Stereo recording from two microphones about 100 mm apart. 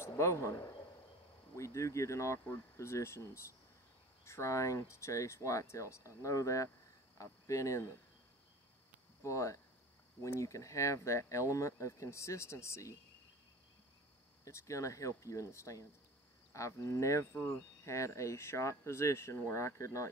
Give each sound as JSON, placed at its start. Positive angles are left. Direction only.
{"t": 0.2, "sound": "speech", "side_deg": 30}
{"t": 9.2, "sound": "speech", "side_deg": 30}
{"t": 14.4, "sound": "speech", "side_deg": 30}